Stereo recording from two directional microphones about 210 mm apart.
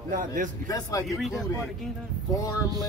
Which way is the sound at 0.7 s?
15° left (ahead or behind).